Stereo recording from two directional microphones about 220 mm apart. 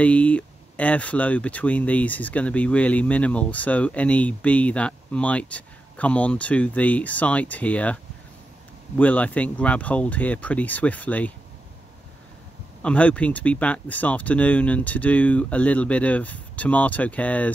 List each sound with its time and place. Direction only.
0.0 s speech: 5° left (ahead or behind)
12.8 s speech: 5° left (ahead or behind)